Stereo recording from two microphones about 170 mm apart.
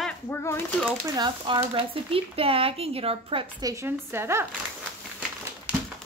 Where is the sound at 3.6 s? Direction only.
20° right (ahead or behind).